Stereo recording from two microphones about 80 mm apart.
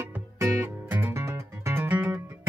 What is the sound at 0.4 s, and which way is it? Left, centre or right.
Music, right.